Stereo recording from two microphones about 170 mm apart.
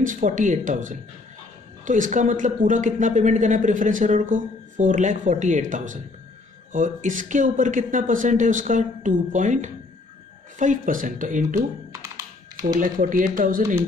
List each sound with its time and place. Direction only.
0.0 s a woman's voice: 50° right (ahead or behind)
12.6 s speech: 55° right (ahead or behind)